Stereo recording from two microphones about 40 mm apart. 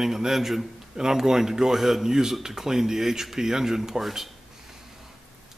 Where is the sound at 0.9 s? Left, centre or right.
Centre.